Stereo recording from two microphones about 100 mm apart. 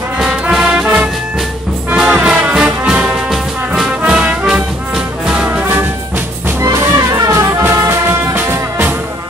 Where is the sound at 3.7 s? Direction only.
5° right (ahead or behind).